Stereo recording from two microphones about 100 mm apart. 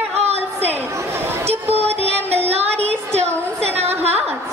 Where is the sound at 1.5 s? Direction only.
90° right.